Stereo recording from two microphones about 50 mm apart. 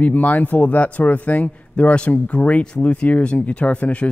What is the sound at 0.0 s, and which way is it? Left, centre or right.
Speech, left.